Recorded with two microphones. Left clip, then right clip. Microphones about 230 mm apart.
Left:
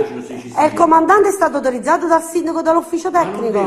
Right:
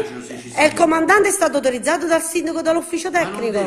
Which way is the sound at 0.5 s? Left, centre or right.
Right.